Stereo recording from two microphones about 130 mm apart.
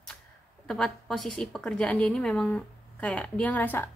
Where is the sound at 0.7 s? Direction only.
5° left (ahead or behind).